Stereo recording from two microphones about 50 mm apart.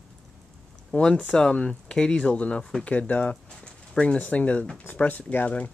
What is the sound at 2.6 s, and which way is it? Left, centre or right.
Speech, centre.